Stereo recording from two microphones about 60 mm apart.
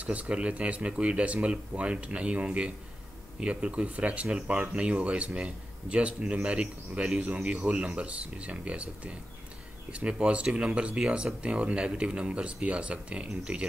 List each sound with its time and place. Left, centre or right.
0.0 s speech: right